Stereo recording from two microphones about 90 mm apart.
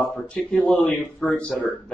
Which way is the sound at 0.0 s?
15° left (ahead or behind).